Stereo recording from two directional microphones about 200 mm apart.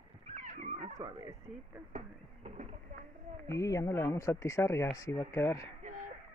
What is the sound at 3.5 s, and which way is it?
Speech, 15° left (ahead or behind).